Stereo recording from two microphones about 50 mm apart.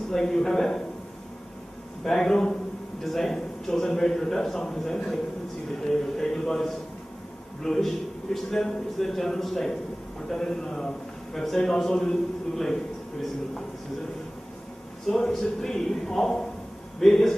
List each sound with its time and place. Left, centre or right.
0.1 s a man's voice: centre
2.1 s a man's voice: centre
15.0 s a man's voice: centre